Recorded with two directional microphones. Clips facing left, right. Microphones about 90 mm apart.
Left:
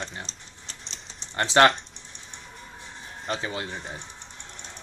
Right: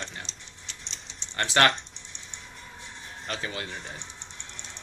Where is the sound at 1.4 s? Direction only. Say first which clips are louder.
Left 5 dB; 25° left (ahead or behind).